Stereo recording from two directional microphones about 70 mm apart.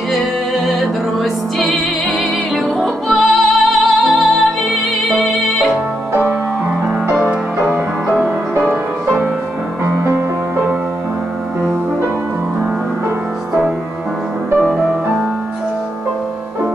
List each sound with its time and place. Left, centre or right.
0.7 s music: centre
7.2 s music: centre